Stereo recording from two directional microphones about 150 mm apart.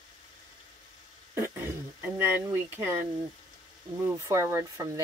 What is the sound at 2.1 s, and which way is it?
Speech, 15° right (ahead or behind).